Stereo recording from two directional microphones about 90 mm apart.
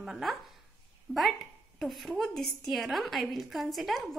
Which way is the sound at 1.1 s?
25° right (ahead or behind).